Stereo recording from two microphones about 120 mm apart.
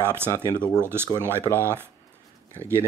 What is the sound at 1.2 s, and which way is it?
Speech, 20° right (ahead or behind).